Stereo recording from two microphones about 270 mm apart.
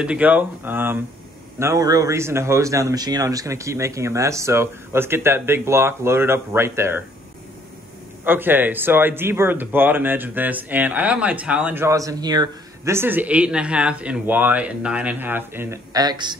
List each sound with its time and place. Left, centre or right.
0.0 s a man's voice: centre
8.2 s a man's voice: centre